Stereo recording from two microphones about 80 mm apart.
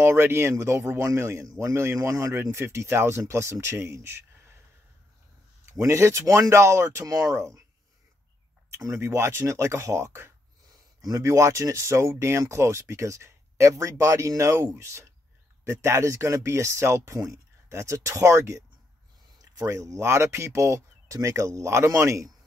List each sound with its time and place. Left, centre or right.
0.0 s speech: right
5.7 s speech: right
8.7 s speech: right
10.6 s speech: right
19.8 s speech: right